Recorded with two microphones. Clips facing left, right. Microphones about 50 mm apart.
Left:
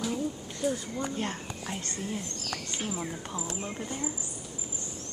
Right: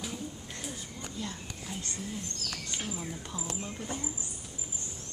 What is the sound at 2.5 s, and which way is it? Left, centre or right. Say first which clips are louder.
Speech: left 5 dB; left.